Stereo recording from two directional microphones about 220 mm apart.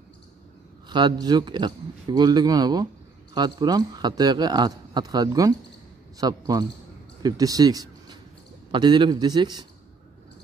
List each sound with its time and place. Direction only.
0.8 s a man's voice: 20° right (ahead or behind)